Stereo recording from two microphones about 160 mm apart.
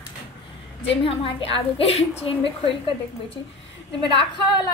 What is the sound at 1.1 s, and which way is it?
A woman's voice, 30° left (ahead or behind).